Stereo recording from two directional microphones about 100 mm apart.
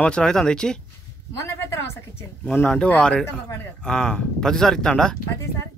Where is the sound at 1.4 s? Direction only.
30° left (ahead or behind).